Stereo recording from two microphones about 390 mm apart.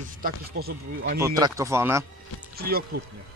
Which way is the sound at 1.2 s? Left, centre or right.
Centre.